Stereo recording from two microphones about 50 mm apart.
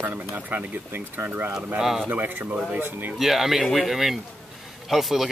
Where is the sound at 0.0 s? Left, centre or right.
Right.